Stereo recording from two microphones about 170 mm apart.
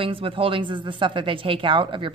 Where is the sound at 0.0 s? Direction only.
30° right (ahead or behind).